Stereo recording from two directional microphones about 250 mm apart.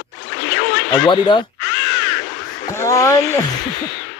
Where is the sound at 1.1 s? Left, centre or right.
Centre.